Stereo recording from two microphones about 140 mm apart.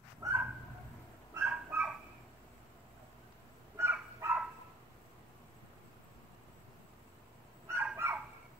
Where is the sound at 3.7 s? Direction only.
20° right (ahead or behind).